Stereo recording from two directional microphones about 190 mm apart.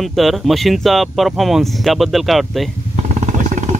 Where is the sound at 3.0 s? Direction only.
40° right (ahead or behind).